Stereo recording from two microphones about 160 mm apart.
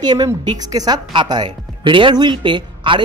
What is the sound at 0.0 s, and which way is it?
A woman's voice, 25° right (ahead or behind).